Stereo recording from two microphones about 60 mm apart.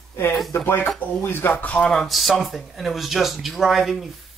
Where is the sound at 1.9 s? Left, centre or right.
Centre.